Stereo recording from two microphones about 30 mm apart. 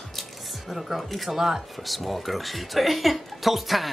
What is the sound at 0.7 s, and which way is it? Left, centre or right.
Speech, centre.